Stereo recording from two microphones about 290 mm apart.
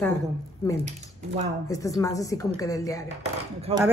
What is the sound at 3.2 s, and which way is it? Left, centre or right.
Speech, right.